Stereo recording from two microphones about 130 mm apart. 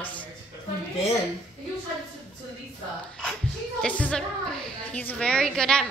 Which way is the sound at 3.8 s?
10° left (ahead or behind).